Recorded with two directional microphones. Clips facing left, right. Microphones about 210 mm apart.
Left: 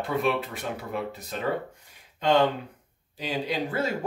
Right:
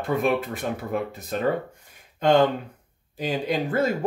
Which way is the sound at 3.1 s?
50° right (ahead or behind).